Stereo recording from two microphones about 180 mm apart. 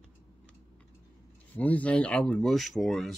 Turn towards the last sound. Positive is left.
turn(degrees=0)  # may be behind; listen again after turning